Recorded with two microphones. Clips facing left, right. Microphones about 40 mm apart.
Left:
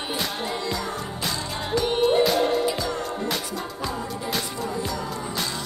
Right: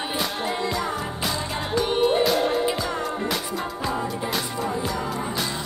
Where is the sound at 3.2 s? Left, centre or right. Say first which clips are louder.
Right 2 dB; centre.